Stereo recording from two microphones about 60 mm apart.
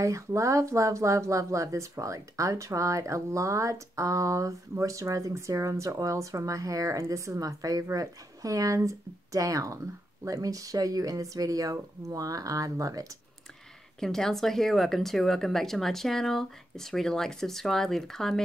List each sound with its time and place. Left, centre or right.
0.0 s speech: right
7.9 s speech: right
13.9 s speech: centre